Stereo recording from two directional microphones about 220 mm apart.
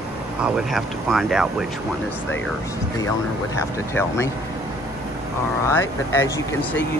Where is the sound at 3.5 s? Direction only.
10° left (ahead or behind).